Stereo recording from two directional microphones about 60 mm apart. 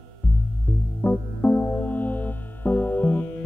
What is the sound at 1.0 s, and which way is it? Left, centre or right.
Music, left.